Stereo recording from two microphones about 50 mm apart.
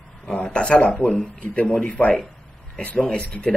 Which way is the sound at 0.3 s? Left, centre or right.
Left.